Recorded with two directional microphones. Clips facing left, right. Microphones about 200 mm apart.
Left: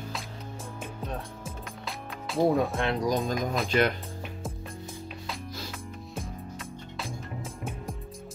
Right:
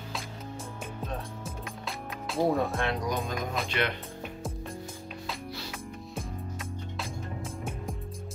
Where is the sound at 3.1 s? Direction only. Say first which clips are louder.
Left 4 dB; 40° left (ahead or behind).